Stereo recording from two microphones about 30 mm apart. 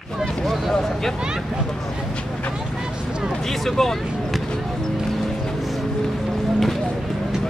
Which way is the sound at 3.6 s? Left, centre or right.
Centre.